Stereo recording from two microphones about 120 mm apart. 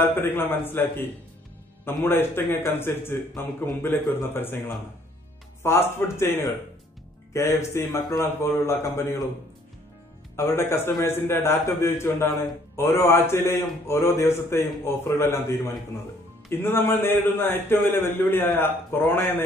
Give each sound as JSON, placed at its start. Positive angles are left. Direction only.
{"t": 0.0, "sound": "a man's voice", "side_deg": 20}
{"t": 10.3, "sound": "a man's voice", "side_deg": 20}